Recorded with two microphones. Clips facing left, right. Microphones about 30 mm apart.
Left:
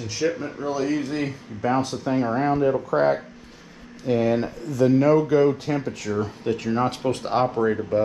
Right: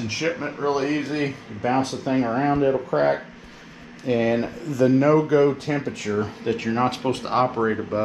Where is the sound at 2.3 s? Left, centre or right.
Right.